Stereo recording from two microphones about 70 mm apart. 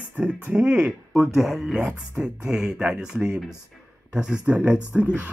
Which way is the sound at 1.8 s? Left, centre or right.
Centre.